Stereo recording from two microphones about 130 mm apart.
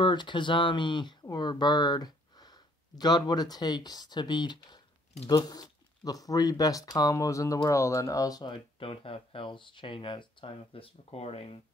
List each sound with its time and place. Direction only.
0.0 s speech: 35° left (ahead or behind)
8.7 s speech: 45° left (ahead or behind)